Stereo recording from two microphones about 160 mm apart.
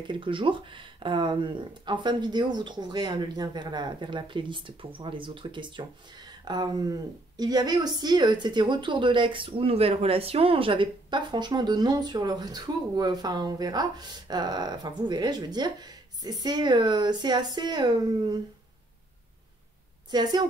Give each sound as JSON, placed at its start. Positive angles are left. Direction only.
{"t": 0.0, "sound": "speech", "side_deg": -30}
{"t": 20.1, "sound": "speech", "side_deg": -25}